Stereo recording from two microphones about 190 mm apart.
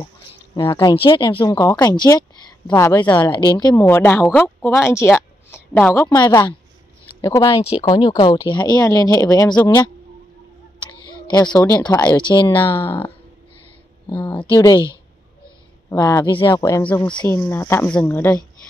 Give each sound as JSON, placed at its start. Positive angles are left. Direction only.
{"t": 0.6, "sound": "speech", "side_deg": 25}
{"t": 3.3, "sound": "speech", "side_deg": 25}
{"t": 10.8, "sound": "a sound", "side_deg": 25}
{"t": 11.5, "sound": "speech", "side_deg": 20}
{"t": 12.8, "sound": "speech", "side_deg": 10}
{"t": 15.9, "sound": "speech", "side_deg": 15}